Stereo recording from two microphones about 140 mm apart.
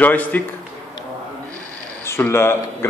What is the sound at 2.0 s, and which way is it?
Speech, 20° left (ahead or behind).